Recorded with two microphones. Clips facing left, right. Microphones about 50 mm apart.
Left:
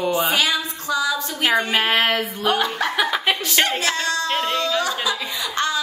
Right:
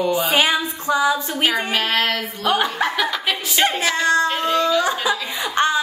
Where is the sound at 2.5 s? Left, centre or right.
Centre.